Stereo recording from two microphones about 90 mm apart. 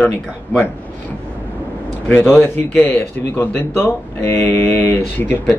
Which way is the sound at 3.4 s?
30° left (ahead or behind).